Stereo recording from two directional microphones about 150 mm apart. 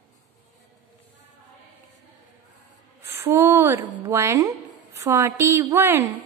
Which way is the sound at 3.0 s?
15° right (ahead or behind).